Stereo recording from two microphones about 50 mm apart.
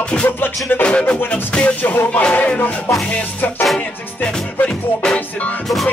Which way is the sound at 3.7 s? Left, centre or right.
Centre.